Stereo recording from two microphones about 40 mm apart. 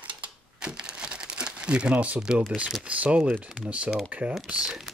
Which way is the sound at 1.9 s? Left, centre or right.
Right.